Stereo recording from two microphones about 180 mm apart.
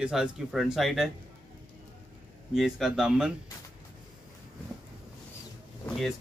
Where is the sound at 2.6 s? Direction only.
Centre (ahead or behind).